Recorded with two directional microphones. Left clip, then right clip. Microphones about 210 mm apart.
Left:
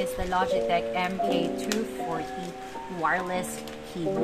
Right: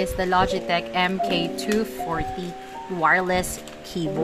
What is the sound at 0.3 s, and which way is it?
Ratchet, 30° right (ahead or behind).